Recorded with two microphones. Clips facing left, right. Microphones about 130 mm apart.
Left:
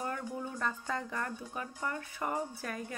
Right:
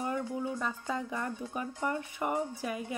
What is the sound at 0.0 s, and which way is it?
Speech, 15° right (ahead or behind).